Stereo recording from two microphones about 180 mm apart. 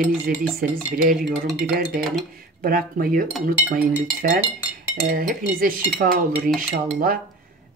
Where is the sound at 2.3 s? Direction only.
55° right (ahead or behind).